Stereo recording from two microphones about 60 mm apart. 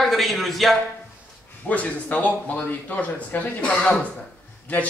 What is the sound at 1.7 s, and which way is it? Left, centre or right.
Speech, left.